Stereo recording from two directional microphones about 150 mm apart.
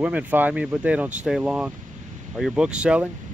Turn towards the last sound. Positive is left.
turn(degrees=-5)  # may be behind; listen again after turning